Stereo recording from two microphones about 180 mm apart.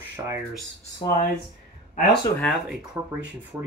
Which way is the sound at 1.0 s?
20° left (ahead or behind).